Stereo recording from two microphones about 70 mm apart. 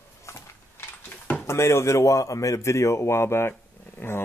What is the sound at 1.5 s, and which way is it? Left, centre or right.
A man's voice, left.